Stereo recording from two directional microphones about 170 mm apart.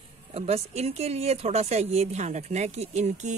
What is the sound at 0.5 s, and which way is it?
Speech, 40° right (ahead or behind).